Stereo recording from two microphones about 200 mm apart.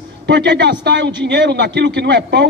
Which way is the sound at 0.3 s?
60° right (ahead or behind).